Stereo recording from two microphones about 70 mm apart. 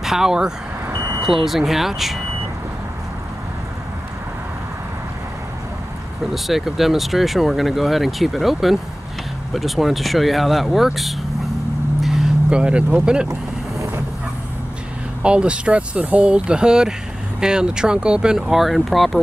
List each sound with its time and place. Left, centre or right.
0.0 s speech: centre
6.3 s speech: centre
12.0 s vehicle: centre
12.4 s speech: centre
13.3 s vehicle: right
15.2 s speech: centre